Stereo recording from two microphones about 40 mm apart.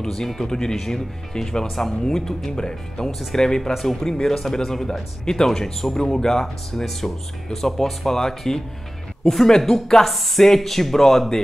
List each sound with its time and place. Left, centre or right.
0.0 s speech: centre
3.1 s speech: centre
3.3 s speech: centre